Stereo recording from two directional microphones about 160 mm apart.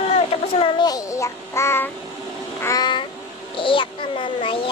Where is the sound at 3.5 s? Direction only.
30° left (ahead or behind).